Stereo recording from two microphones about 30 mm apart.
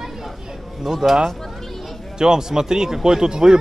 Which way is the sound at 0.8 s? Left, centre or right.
Centre.